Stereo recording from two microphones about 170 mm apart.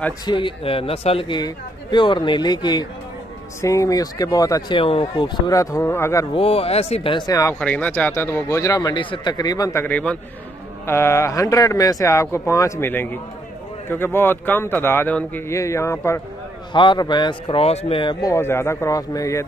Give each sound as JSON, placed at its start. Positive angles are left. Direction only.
{"t": 0.3, "sound": "speech", "side_deg": 30}
{"t": 6.3, "sound": "speech", "side_deg": 35}
{"t": 7.6, "sound": "speech", "side_deg": 10}
{"t": 16.7, "sound": "speech", "side_deg": 25}
{"t": 18.3, "sound": "speech", "side_deg": 15}